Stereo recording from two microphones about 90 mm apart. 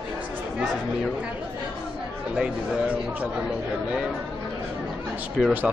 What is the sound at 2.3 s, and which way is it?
Speech, 10° right (ahead or behind).